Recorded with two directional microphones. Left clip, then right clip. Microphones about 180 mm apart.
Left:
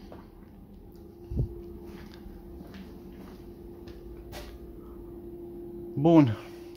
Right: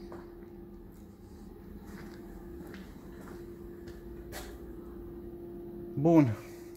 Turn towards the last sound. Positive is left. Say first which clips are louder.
# left 4 dB
turn(degrees=15)  # may be behind; listen again after turning